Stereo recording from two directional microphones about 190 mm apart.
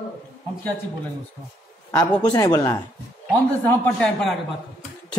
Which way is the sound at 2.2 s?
20° left (ahead or behind).